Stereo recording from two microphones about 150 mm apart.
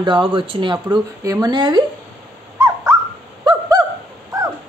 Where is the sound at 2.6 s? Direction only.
20° right (ahead or behind).